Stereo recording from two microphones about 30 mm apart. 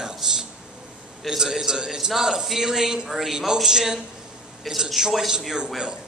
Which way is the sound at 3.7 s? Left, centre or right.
Centre.